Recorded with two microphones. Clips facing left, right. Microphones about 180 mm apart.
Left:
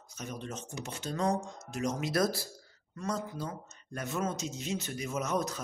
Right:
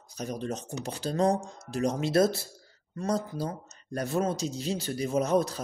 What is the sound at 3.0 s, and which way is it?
Speech, 35° right (ahead or behind).